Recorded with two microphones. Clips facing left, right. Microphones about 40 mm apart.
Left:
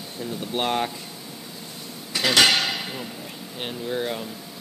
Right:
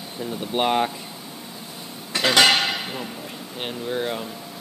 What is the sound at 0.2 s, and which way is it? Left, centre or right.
Speech, centre.